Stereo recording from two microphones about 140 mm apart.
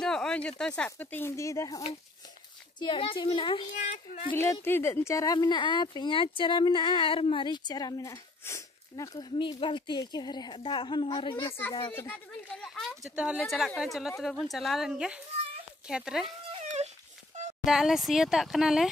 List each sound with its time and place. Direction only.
0.0 s speech: 5° left (ahead or behind); by 1.8 s 20° left (ahead or behind)
2.8 s speech: 40° left (ahead or behind)
3.7 s speech: 60° left (ahead or behind)
4.6 s speech: 15° left (ahead or behind); by 11.4 s 35° left (ahead or behind)
11.4 s speech: 15° left (ahead or behind)
12.6 s a woman's voice: centre (ahead or behind)
17.6 s a woman's voice: 5° right (ahead or behind)